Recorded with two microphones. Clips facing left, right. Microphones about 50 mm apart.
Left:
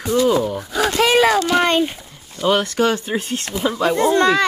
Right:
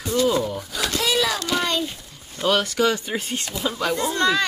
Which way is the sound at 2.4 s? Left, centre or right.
Left.